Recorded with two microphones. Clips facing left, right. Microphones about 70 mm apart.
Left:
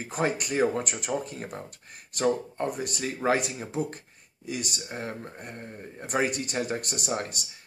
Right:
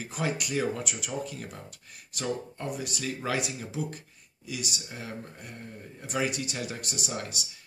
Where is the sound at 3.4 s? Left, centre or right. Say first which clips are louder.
Left 3 dB; left.